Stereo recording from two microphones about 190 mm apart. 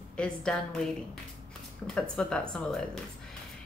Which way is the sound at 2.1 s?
5° left (ahead or behind).